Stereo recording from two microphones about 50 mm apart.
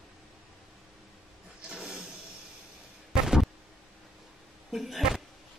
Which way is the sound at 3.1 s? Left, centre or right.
Centre.